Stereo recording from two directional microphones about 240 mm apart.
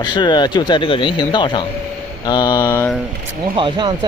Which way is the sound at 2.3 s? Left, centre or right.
Centre.